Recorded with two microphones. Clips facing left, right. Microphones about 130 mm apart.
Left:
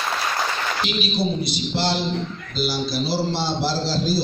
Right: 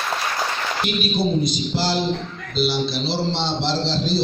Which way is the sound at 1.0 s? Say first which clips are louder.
Right 5 dB; 50° right (ahead or behind).